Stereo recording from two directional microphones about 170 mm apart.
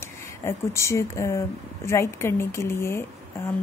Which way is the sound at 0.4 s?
15° left (ahead or behind).